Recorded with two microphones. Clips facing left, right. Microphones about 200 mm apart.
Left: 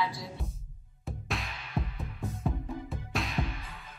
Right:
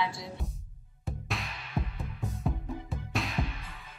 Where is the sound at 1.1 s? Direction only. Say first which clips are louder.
Even; centre (ahead or behind).